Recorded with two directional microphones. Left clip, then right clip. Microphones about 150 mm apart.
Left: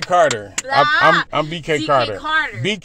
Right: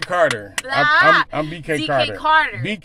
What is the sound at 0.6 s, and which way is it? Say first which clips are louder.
Speech: left 1 dB; 5° right (ahead or behind).